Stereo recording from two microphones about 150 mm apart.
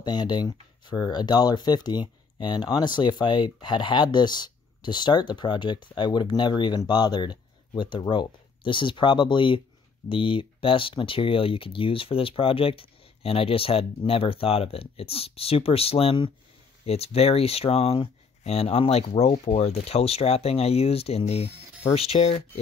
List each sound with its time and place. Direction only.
0.0 s speech: 30° left (ahead or behind)